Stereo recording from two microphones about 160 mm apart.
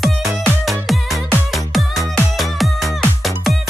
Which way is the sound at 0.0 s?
Centre (ahead or behind).